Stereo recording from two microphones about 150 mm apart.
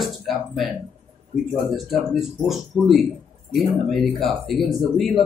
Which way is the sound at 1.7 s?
Centre (ahead or behind).